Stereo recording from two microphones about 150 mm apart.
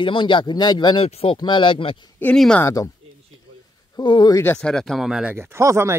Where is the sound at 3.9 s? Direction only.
30° left (ahead or behind).